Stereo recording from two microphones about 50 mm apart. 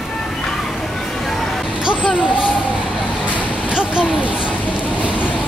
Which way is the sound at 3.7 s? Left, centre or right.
Centre.